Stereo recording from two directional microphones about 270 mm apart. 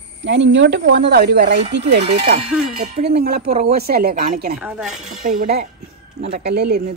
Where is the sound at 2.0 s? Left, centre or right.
Right.